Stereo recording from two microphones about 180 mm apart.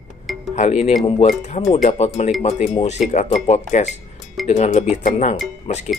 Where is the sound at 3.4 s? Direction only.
40° left (ahead or behind).